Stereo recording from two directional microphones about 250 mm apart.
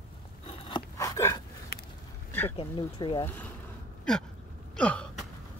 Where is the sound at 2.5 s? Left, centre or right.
Centre.